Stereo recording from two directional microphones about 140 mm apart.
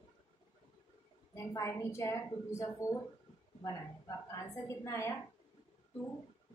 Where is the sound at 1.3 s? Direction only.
20° left (ahead or behind).